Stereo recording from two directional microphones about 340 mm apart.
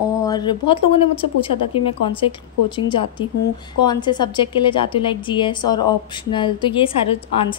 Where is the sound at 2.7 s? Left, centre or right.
Centre.